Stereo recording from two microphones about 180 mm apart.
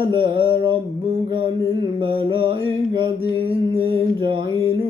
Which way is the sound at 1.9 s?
30° right (ahead or behind).